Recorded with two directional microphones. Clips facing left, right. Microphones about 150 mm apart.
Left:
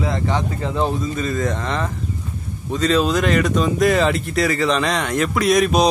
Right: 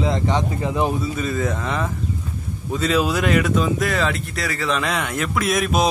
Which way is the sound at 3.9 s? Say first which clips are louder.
Left 5 dB; 20° left (ahead or behind).